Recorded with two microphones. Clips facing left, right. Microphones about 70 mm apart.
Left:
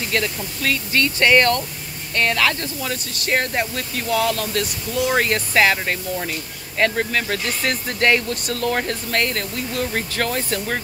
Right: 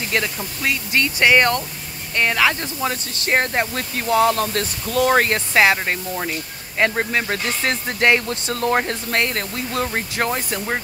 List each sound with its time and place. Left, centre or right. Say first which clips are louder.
0.1 s speech: right 1 dB; right
2.8 s speech: right 3 dB; right
5.3 s speech: right 1 dB; right
9.9 s speech: right 1 dB; right